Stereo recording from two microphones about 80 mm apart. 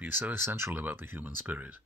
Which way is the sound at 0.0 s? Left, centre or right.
Right.